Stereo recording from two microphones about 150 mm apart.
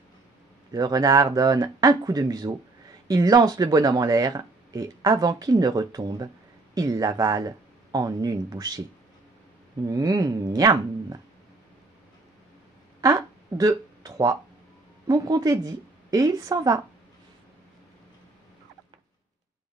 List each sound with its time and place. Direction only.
0.7 s speech: 25° right (ahead or behind)
9.8 s speech: 25° right (ahead or behind)
13.0 s a sound: 20° right (ahead or behind)
15.0 s speech: 25° right (ahead or behind)